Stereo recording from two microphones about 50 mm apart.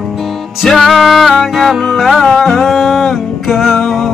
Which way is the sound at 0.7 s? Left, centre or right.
Centre.